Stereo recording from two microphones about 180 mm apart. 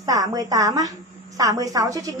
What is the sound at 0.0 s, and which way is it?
A woman's voice, 20° right (ahead or behind).